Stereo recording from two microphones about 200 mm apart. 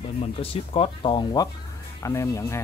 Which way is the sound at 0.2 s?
30° left (ahead or behind).